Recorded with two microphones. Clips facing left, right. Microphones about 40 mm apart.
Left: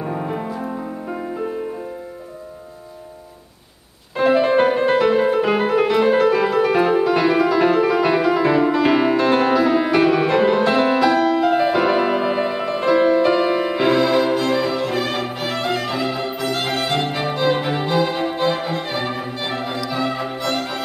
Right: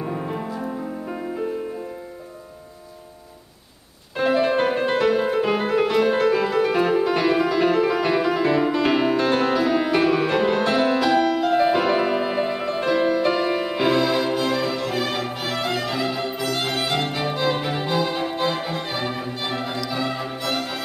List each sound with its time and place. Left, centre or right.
0.0 s music: centre
4.2 s music: centre